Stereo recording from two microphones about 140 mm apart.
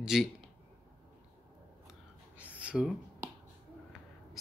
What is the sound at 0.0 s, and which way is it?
Speech, 5° right (ahead or behind).